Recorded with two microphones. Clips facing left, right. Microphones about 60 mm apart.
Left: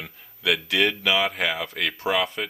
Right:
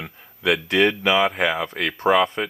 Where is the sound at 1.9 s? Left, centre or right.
Right.